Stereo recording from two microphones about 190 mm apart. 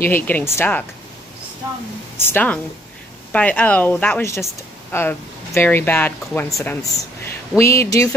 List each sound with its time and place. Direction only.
0.0 s speech: 10° left (ahead or behind)
2.2 s speech: 10° left (ahead or behind)